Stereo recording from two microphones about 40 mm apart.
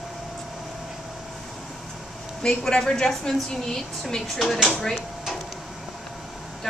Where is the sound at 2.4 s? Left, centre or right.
Centre.